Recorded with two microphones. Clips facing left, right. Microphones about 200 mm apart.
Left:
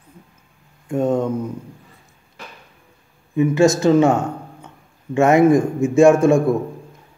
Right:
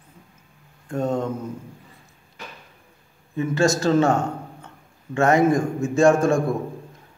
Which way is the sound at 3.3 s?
15° left (ahead or behind).